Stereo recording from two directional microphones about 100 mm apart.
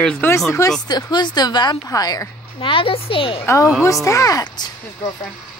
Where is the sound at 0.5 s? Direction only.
30° left (ahead or behind).